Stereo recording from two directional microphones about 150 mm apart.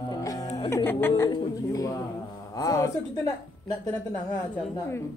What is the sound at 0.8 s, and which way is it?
Speech, 15° left (ahead or behind).